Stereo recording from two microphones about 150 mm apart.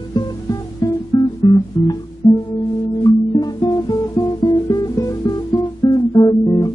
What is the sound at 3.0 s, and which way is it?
Guitar, 25° left (ahead or behind).